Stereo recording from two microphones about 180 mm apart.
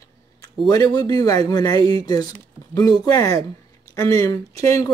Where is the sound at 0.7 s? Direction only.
20° left (ahead or behind).